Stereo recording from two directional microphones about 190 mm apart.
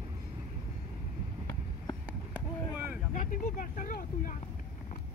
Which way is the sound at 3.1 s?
45° left (ahead or behind).